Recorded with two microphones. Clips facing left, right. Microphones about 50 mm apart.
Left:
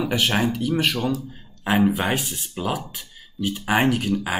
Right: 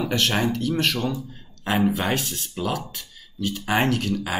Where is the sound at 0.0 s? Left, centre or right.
Centre.